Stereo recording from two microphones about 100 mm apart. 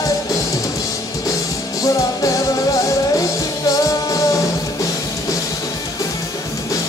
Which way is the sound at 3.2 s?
35° left (ahead or behind).